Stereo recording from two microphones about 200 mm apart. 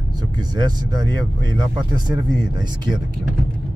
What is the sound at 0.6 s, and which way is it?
Speech, 20° right (ahead or behind).